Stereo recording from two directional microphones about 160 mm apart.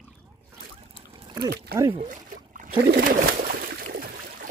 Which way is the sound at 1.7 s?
70° right (ahead or behind).